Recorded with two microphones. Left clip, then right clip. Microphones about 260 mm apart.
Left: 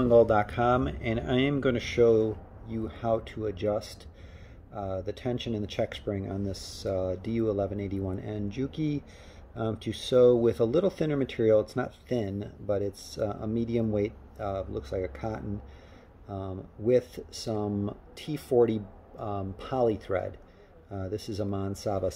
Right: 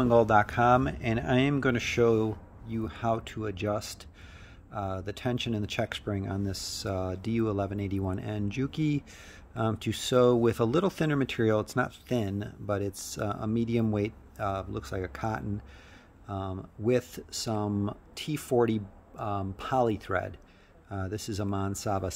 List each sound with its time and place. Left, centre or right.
0.0 s speech: right